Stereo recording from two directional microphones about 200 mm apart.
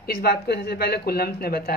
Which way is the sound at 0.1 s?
50° left (ahead or behind).